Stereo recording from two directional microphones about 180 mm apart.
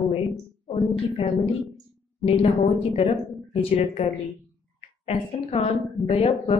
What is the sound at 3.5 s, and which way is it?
A woman's voice, 30° left (ahead or behind).